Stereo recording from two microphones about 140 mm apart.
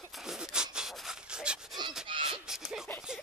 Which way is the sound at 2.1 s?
35° right (ahead or behind).